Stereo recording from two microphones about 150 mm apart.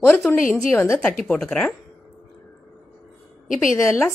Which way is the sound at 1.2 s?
5° left (ahead or behind).